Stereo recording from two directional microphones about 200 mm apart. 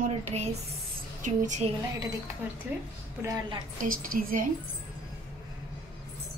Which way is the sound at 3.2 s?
20° right (ahead or behind).